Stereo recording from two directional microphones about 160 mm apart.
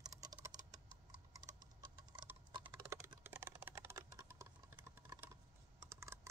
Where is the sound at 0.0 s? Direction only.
25° right (ahead or behind).